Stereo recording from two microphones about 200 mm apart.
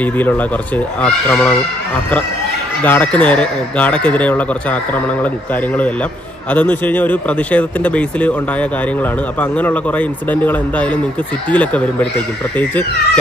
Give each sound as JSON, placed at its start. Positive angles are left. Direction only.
{"t": 0.0, "sound": "speech", "side_deg": 10}
{"t": 2.8, "sound": "speech", "side_deg": 5}
{"t": 6.5, "sound": "speech", "side_deg": 10}